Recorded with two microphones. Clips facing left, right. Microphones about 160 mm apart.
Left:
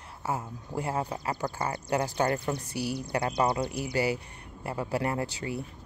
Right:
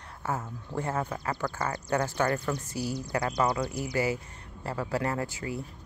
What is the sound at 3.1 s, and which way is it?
Speech, 25° left (ahead or behind).